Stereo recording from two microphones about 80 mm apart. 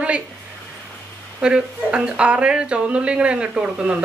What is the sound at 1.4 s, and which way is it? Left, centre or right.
Speech, centre.